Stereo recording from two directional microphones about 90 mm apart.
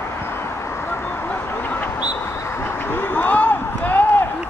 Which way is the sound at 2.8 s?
20° left (ahead or behind).